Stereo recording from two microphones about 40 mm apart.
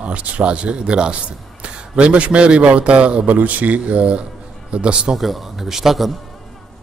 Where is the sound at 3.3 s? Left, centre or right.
Right.